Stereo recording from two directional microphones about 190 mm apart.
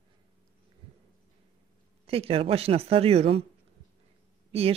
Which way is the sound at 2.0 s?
30° right (ahead or behind).